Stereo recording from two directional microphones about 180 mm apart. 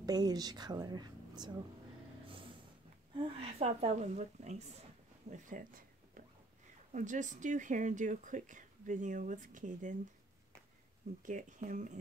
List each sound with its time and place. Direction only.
0.0 s a woman's voice: 20° right (ahead or behind)
3.2 s a woman's voice: 35° right (ahead or behind)
5.3 s a sound: 50° right (ahead or behind)
6.9 s speech: 45° right (ahead or behind)
11.2 s speech: 45° right (ahead or behind)